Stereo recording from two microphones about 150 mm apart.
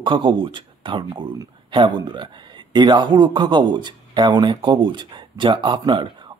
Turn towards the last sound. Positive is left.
turn(degrees=-30)  # may be behind; listen again after turning